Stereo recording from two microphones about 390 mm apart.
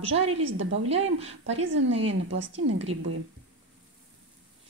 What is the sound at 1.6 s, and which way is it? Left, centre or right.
Speech, right.